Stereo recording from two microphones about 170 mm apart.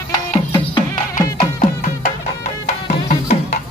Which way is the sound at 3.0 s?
45° left (ahead or behind).